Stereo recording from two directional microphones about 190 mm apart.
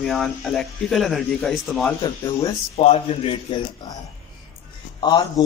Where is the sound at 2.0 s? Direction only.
20° left (ahead or behind).